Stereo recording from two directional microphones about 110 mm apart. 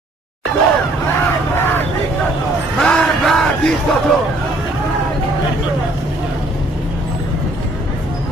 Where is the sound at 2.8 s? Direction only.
5° left (ahead or behind).